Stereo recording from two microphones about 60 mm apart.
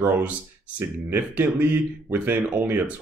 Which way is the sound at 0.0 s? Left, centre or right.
Right.